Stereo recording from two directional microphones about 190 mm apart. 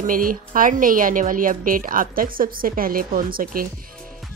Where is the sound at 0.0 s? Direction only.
45° right (ahead or behind).